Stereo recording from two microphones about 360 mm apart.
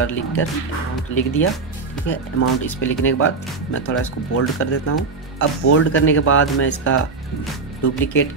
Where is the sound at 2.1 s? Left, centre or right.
Left.